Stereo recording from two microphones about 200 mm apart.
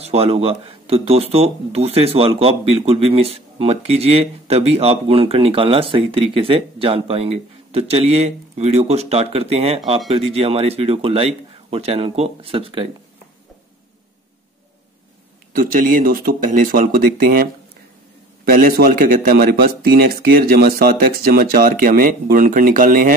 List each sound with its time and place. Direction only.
0.0 s speech: 30° right (ahead or behind)
15.5 s a man's voice: 45° right (ahead or behind)